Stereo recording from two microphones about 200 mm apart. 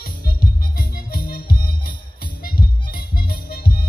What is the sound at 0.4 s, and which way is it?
Music, 45° left (ahead or behind).